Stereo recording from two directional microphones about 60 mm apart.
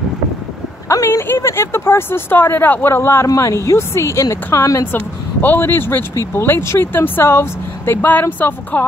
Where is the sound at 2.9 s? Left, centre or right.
Left.